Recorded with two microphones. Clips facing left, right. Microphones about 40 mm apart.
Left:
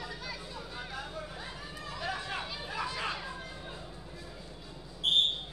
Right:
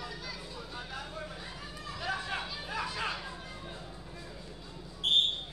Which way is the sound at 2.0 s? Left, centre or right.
Centre.